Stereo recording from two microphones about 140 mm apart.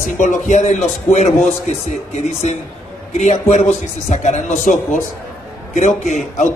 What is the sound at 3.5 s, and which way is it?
A man's voice, 55° left (ahead or behind).